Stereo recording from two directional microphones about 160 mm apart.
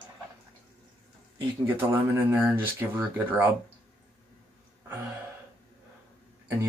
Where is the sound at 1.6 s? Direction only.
15° right (ahead or behind).